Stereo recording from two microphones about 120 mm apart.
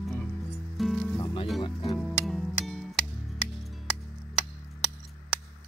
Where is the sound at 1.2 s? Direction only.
45° left (ahead or behind).